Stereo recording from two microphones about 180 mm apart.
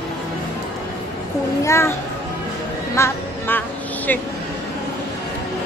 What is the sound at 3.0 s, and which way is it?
Speech, 10° left (ahead or behind).